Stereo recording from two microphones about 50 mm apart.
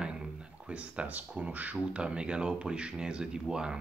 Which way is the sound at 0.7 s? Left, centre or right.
Right.